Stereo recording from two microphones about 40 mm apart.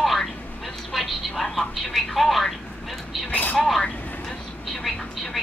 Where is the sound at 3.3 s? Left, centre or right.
Left.